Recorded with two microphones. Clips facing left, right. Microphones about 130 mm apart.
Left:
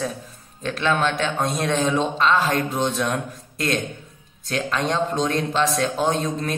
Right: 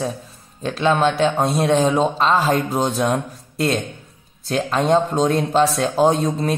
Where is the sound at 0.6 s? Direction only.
35° right (ahead or behind).